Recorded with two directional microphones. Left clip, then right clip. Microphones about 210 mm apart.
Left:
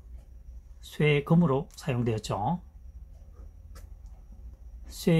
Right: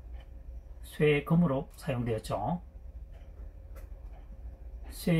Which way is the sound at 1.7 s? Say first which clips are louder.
Left 4 dB; 65° left (ahead or behind).